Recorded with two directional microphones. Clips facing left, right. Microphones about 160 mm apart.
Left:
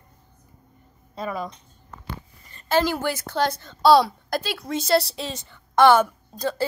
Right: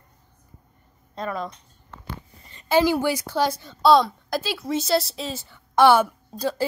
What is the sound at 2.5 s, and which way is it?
A woman's voice, 15° right (ahead or behind).